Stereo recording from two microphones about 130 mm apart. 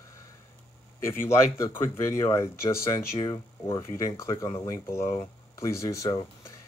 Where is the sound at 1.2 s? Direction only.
20° left (ahead or behind).